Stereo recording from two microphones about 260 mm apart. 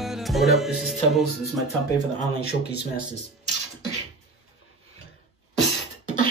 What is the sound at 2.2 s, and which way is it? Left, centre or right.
Speech, left.